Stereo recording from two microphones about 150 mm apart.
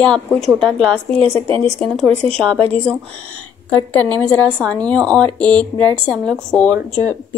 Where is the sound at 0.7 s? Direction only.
5° left (ahead or behind).